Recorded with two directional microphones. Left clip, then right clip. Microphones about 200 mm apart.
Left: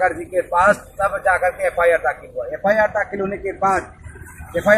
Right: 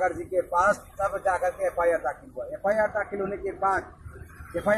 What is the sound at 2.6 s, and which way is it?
Speech, 15° left (ahead or behind).